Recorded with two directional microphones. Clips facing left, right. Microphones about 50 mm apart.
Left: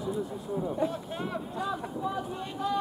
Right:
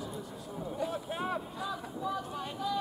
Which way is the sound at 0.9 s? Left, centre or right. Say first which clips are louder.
Even; centre.